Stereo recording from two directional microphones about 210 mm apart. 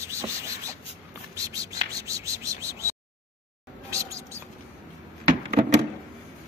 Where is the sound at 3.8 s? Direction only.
15° right (ahead or behind).